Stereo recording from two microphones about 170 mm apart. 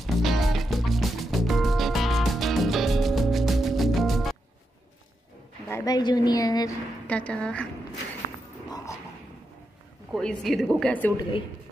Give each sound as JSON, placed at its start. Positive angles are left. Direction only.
{"t": 0.0, "sound": "music", "side_deg": 0}
{"t": 5.7, "sound": "a woman's voice", "side_deg": 20}
{"t": 7.1, "sound": "a woman's voice", "side_deg": 5}
{"t": 8.6, "sound": "dog", "side_deg": 20}
{"t": 10.1, "sound": "a woman's voice", "side_deg": 0}